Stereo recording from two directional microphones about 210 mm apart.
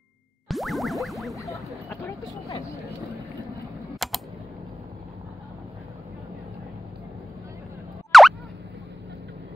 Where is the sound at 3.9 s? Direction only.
Centre (ahead or behind).